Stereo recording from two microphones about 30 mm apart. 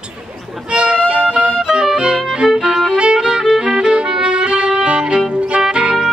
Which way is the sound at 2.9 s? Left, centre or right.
Right.